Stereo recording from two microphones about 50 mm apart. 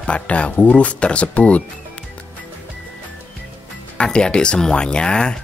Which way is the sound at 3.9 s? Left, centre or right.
Centre.